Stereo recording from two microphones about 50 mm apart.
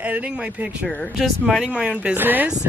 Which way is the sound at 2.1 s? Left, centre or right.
Right.